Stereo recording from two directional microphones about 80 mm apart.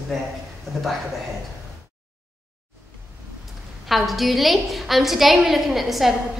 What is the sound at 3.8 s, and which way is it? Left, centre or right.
A woman's voice, centre.